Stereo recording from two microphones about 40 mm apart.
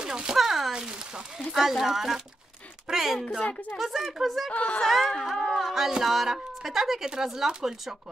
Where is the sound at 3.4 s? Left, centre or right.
Left.